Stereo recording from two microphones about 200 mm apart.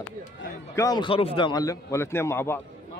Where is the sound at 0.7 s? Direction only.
20° left (ahead or behind).